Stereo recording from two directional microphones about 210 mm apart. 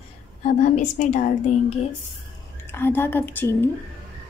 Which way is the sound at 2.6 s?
10° left (ahead or behind).